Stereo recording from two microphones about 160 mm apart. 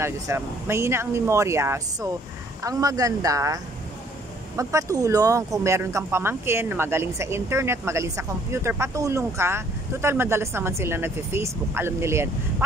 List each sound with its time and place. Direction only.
0.0 s speech: 15° right (ahead or behind)